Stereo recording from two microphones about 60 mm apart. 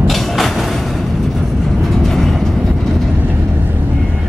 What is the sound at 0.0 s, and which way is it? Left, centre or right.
Train, centre.